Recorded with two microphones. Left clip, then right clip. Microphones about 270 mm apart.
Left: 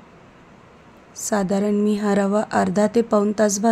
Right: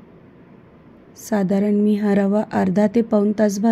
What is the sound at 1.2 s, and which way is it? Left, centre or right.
A woman's voice, centre.